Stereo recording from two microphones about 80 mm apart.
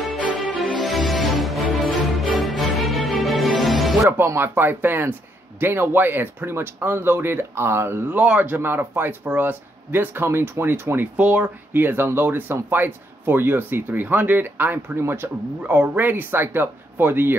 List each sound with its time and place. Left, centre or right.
0.6 s music: centre
4.0 s speech: right
8.2 s speech: centre
11.2 s speech: centre
11.7 s speech: right
15.6 s speech: centre